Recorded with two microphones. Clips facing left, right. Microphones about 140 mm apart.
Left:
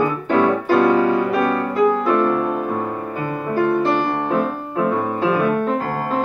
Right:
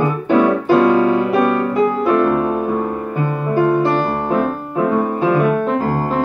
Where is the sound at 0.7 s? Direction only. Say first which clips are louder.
Right 2 dB; 20° right (ahead or behind).